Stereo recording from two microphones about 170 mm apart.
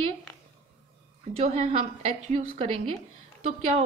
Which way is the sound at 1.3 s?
35° right (ahead or behind).